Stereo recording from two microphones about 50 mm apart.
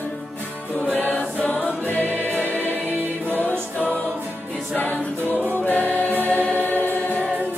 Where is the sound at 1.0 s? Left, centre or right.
Left.